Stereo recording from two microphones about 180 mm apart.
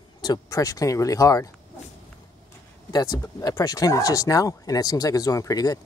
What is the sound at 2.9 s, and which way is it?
Speech, 20° left (ahead or behind).